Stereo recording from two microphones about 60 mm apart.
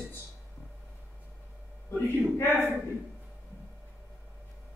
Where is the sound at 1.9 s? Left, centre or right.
Left.